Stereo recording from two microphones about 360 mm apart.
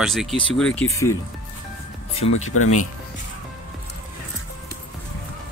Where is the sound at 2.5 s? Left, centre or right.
Left.